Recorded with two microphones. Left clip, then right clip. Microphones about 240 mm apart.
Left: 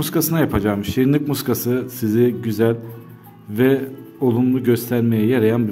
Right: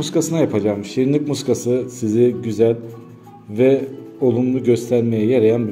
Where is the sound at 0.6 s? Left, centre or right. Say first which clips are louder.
Right 1 dB; left.